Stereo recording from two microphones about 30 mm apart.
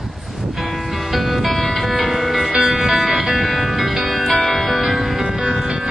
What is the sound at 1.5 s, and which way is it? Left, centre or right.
Music, centre.